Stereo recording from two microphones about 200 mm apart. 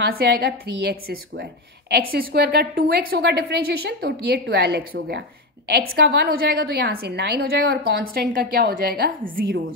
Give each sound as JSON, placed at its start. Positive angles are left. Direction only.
{"t": 0.0, "sound": "a woman's voice", "side_deg": -55}